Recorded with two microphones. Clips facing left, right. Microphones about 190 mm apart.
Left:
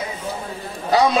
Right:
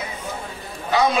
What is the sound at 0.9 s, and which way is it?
Speech, 35° left (ahead or behind).